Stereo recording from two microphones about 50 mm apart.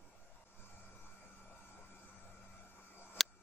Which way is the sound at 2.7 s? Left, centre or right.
Left.